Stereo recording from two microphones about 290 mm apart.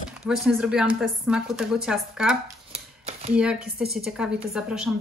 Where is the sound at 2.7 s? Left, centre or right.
Right.